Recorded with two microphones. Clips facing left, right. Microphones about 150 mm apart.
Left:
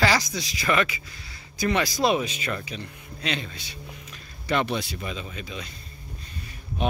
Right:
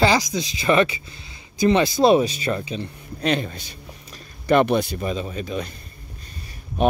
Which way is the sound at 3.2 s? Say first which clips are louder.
Right 8 dB; 45° right (ahead or behind).